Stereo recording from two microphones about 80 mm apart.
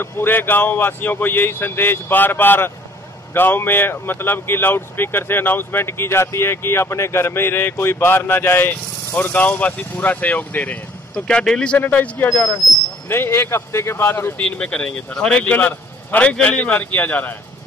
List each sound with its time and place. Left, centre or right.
0.0 s speech: left
14.4 s speech: centre